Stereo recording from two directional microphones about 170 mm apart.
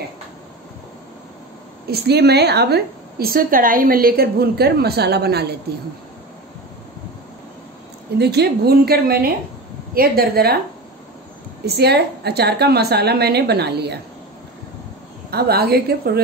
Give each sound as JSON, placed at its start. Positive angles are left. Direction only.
{"t": 1.9, "sound": "a woman's voice", "side_deg": -75}
{"t": 8.2, "sound": "a woman's voice", "side_deg": -75}
{"t": 11.6, "sound": "a woman's voice", "side_deg": -75}
{"t": 15.3, "sound": "a woman's voice", "side_deg": -65}